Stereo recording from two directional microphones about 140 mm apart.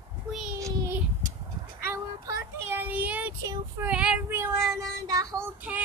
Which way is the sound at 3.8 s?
5° right (ahead or behind).